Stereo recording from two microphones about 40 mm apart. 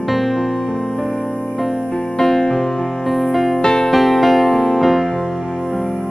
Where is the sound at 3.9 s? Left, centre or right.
Centre.